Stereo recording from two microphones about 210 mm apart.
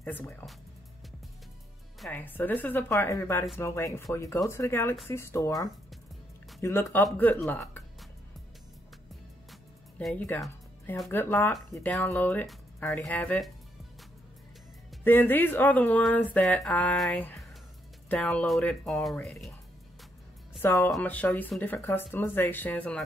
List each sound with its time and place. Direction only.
0.0 s speech: 10° left (ahead or behind)
2.0 s speech: 10° left (ahead or behind)
9.5 s music: 5° left (ahead or behind)
11.1 s speech: 10° left (ahead or behind)
14.9 s speech: 10° left (ahead or behind)
20.6 s speech: 10° left (ahead or behind)